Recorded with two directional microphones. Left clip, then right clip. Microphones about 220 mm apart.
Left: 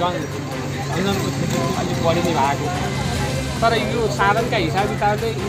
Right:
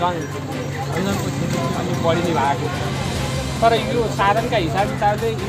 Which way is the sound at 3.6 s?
20° right (ahead or behind).